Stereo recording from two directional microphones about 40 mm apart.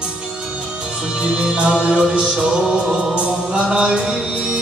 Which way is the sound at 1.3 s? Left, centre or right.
Right.